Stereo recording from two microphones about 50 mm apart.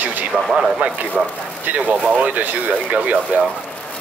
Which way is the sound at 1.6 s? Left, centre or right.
Right.